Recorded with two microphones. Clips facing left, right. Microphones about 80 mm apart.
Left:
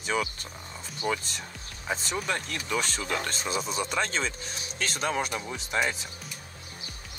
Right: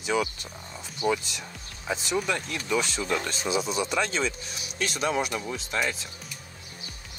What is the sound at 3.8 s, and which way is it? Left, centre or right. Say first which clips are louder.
Speech: right 2 dB; left.